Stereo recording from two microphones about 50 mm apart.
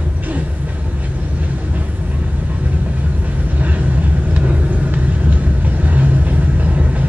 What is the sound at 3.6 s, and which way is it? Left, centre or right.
Vehicle, right.